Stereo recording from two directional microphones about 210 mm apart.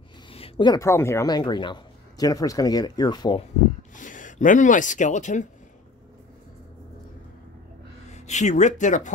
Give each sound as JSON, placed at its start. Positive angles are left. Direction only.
{"t": 0.3, "sound": "speech", "side_deg": 25}
{"t": 3.9, "sound": "speech", "side_deg": 40}
{"t": 8.1, "sound": "speech", "side_deg": 35}